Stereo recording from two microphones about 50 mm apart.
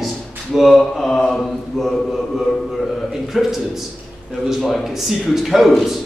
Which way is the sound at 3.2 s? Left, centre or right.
Centre.